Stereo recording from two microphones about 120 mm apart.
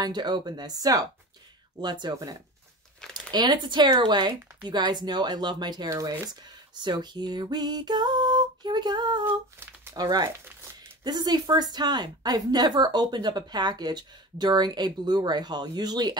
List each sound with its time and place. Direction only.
0.0 s a woman's voice: 35° right (ahead or behind)